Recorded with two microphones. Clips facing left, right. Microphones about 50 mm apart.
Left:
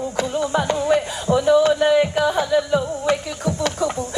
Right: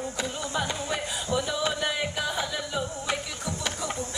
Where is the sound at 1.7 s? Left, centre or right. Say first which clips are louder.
Left 14 dB; left.